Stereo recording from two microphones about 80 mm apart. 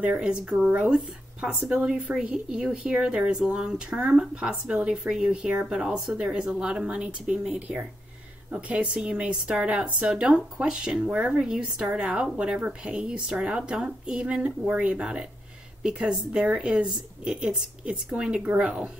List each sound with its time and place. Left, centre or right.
0.0 s speech: centre